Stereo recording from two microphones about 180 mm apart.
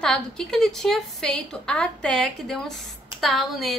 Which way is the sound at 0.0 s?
5° left (ahead or behind).